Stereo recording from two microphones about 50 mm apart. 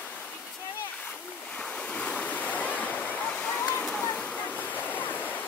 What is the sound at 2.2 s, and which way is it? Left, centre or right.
Waterfall, left.